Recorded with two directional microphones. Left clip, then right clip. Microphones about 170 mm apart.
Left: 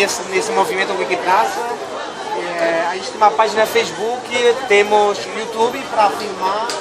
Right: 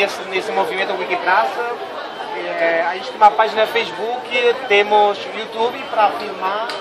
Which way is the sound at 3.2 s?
10° left (ahead or behind).